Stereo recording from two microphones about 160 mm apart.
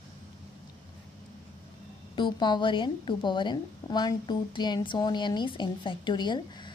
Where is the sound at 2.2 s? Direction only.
30° left (ahead or behind).